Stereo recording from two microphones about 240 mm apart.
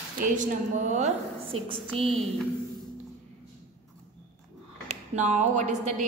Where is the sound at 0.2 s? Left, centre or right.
Right.